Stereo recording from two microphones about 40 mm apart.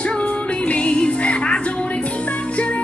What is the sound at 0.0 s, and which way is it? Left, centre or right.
Music, left.